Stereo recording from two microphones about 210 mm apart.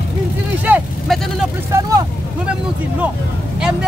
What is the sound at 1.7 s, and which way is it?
Speech, 15° right (ahead or behind).